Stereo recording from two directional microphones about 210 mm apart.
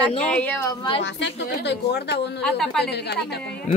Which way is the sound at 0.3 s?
5° left (ahead or behind).